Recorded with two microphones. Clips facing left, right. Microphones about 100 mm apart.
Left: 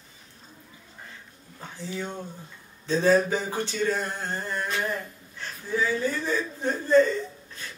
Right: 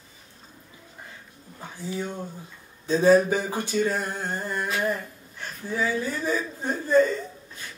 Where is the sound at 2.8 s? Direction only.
15° right (ahead or behind).